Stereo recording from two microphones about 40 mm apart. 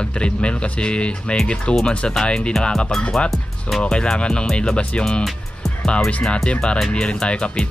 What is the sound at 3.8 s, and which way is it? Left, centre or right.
Speech, left.